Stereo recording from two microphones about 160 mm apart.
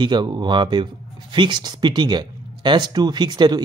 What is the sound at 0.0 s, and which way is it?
Speech, 30° right (ahead or behind).